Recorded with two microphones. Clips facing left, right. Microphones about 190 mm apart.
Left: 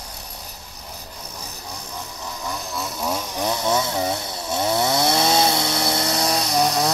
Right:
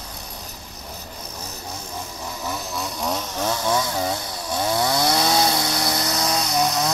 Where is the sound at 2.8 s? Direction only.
5° left (ahead or behind).